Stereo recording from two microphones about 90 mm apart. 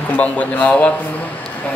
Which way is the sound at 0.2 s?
15° left (ahead or behind).